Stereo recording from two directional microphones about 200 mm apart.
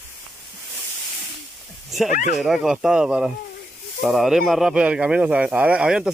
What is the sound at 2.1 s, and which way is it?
Speech, 40° left (ahead or behind).